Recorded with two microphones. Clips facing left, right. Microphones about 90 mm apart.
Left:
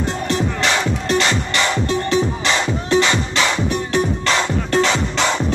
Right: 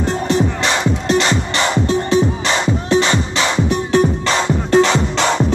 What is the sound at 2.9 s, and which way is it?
Music, 25° right (ahead or behind).